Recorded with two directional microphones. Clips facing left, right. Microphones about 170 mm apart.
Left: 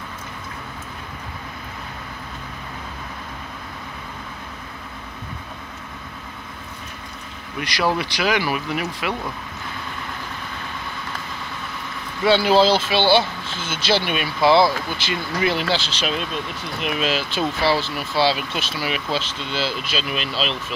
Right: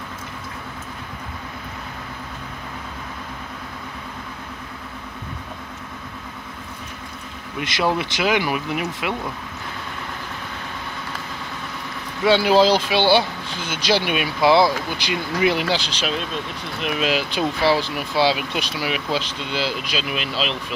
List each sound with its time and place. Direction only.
7.6 s speech: 20° right (ahead or behind)
12.3 s speech: 10° right (ahead or behind)
16.8 s speech: centre (ahead or behind)
17.1 s speech: 15° right (ahead or behind)